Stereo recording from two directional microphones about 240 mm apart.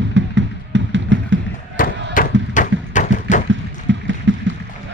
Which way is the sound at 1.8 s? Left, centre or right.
Left.